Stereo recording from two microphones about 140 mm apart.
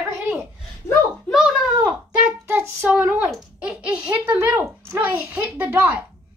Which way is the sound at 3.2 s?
5° right (ahead or behind).